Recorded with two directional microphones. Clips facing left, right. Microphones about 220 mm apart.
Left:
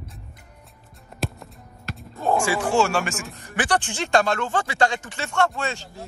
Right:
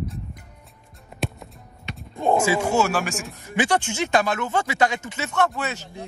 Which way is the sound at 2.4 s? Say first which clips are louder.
Right 2 dB; 25° right (ahead or behind).